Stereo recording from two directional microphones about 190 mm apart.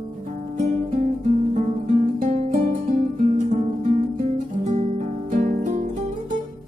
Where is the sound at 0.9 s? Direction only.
40° right (ahead or behind).